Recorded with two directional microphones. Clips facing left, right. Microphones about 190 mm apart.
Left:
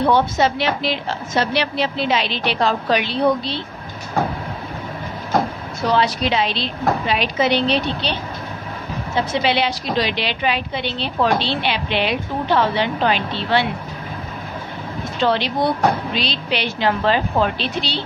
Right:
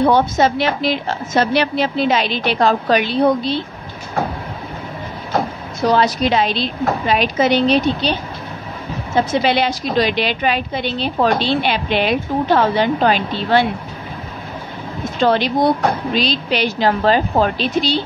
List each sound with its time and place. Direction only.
0.0 s a woman's voice: 45° right (ahead or behind)
5.9 s a woman's voice: 45° right (ahead or behind)
15.2 s a woman's voice: 45° right (ahead or behind)